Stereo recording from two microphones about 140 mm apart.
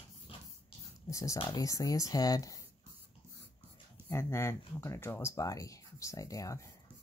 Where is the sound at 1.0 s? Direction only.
25° left (ahead or behind).